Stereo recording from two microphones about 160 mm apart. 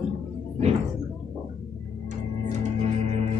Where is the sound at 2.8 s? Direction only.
40° right (ahead or behind).